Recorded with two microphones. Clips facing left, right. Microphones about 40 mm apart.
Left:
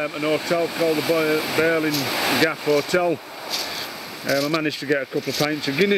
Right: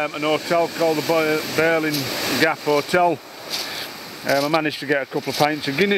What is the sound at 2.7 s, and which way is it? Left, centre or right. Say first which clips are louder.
Speech: even; centre.